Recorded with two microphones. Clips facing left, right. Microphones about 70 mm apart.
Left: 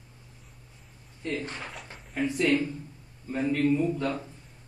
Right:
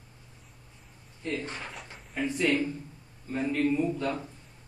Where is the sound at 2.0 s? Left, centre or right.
Centre.